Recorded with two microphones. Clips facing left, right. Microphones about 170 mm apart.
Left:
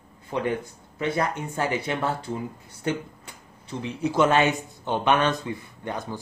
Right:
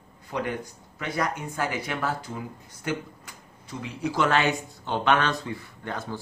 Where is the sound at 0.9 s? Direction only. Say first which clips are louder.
Left 3 dB; 25° left (ahead or behind).